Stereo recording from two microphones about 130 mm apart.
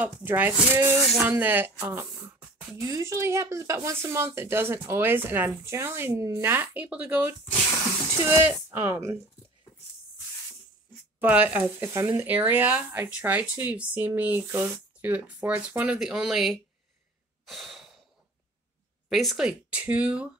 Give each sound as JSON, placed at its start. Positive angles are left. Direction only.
{"t": 0.0, "sound": "speech", "side_deg": -15}
{"t": 2.8, "sound": "speech", "side_deg": -25}
{"t": 11.1, "sound": "speech", "side_deg": -15}
{"t": 17.5, "sound": "a sound", "side_deg": 0}
{"t": 19.0, "sound": "speech", "side_deg": 0}